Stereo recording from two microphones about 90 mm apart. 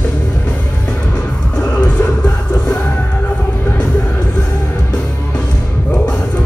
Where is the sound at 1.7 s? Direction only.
15° left (ahead or behind).